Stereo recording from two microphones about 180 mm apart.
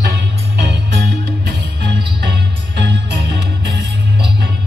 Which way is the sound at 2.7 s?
70° right (ahead or behind).